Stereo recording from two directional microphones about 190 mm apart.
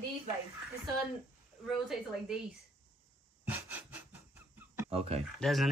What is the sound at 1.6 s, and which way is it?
Speech, centre (ahead or behind).